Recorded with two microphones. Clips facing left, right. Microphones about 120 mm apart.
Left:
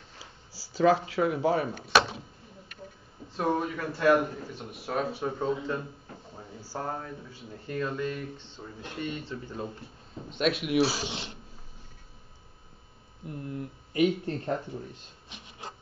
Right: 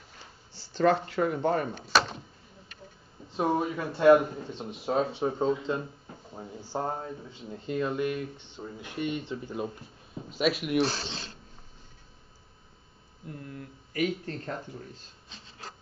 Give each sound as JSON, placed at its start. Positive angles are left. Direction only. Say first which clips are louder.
{"t": 0.2, "sound": "speech", "louder": "left 1 dB", "side_deg": 5}
{"t": 3.3, "sound": "speech", "louder": "right 1 dB", "side_deg": -20}
{"t": 10.3, "sound": "speech", "louder": "even", "side_deg": 0}
{"t": 13.2, "sound": "speech", "louder": "left 5 dB", "side_deg": 25}
{"t": 15.2, "sound": "printer", "louder": "left 3 dB", "side_deg": 15}